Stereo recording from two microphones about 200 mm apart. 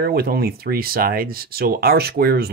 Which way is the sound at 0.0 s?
50° right (ahead or behind).